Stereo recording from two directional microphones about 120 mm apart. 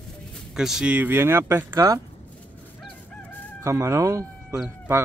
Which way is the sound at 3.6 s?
25° right (ahead or behind).